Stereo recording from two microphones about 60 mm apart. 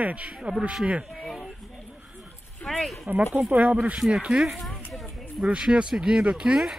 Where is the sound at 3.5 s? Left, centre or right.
Right.